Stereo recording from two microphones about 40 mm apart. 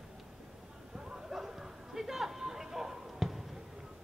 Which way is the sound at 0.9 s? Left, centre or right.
Centre.